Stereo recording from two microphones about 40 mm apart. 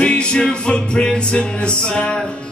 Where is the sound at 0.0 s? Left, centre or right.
Left.